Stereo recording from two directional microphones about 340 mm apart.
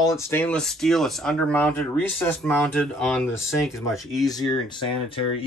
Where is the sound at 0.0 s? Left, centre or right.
Centre.